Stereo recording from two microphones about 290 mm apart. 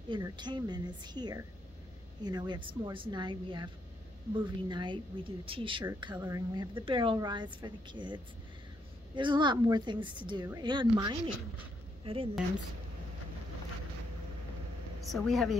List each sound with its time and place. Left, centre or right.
0.1 s a woman's voice: centre
15.0 s a woman's voice: centre